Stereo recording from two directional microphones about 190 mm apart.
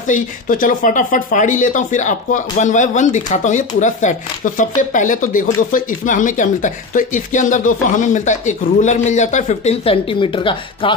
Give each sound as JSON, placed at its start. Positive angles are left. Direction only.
{"t": 0.0, "sound": "speech", "side_deg": 45}